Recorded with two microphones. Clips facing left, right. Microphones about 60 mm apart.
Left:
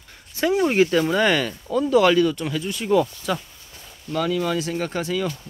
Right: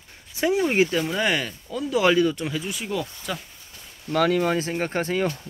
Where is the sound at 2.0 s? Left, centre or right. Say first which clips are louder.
Left 2 dB; centre.